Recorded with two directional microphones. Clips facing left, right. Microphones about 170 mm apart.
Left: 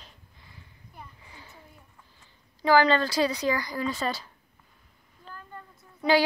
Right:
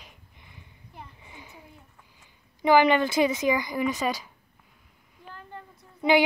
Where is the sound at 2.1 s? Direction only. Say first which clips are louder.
Right 1 dB; 20° right (ahead or behind).